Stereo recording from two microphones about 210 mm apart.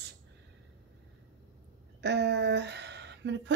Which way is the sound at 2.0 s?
55° right (ahead or behind).